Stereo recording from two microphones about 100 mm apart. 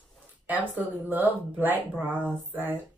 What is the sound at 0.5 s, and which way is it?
Speech, 15° right (ahead or behind).